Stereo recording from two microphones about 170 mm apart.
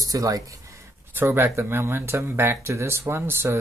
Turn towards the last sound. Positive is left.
turn(degrees=-15)  # may be behind; listen again after turning